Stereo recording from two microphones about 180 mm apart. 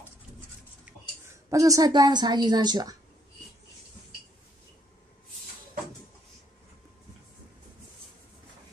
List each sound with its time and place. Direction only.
0.8 s a woman's voice: 15° right (ahead or behind)